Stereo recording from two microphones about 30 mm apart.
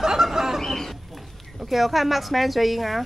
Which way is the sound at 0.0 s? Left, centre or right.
Centre.